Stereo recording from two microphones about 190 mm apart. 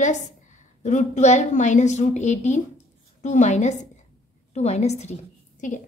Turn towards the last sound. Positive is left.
turn(degrees=40)  # may be behind; listen again after turning